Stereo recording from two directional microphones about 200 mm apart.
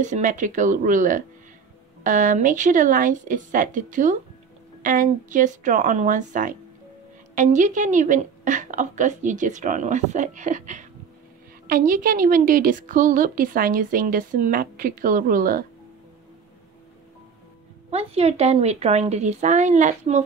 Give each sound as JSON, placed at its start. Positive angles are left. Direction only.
{"t": 0.0, "sound": "a woman's voice", "side_deg": -40}
{"t": 17.8, "sound": "a woman's voice", "side_deg": -30}